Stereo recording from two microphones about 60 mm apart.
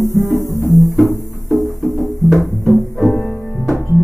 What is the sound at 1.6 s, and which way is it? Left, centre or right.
Music, centre.